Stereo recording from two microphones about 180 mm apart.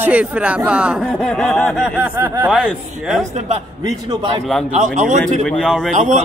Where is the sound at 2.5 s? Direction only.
Centre (ahead or behind).